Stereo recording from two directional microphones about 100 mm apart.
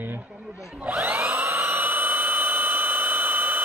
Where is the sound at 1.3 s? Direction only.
20° right (ahead or behind).